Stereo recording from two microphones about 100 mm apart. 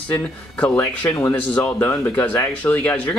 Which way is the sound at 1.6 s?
25° left (ahead or behind).